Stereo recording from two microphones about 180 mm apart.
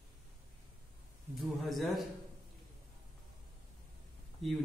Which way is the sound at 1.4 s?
Centre (ahead or behind).